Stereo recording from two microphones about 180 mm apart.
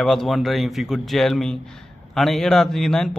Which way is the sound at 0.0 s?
Centre (ahead or behind).